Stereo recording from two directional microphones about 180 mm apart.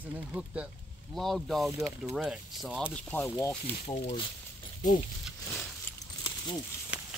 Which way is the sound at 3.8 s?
35° left (ahead or behind).